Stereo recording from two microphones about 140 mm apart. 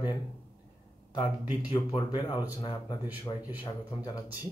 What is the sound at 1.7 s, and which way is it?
Speech, 35° left (ahead or behind).